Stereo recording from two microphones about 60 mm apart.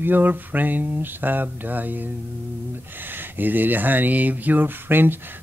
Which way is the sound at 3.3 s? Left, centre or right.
Right.